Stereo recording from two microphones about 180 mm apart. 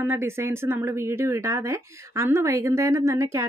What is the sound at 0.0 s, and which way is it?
A woman's voice, 15° right (ahead or behind).